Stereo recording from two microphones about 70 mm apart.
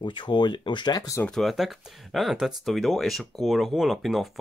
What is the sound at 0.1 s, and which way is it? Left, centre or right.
Speech, left.